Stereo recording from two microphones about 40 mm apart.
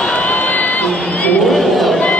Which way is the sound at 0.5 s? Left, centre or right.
Left.